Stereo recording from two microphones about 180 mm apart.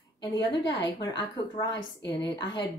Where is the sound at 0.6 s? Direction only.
25° left (ahead or behind).